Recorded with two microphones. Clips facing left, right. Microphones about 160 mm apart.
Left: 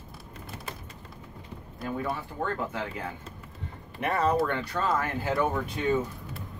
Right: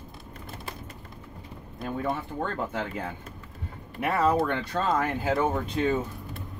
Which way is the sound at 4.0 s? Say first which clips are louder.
Right 1 dB; 5° right (ahead or behind).